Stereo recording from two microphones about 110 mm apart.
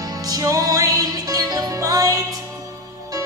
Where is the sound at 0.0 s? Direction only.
35° right (ahead or behind).